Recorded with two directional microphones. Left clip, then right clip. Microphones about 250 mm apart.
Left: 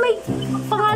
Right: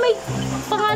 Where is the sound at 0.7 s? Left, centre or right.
Centre.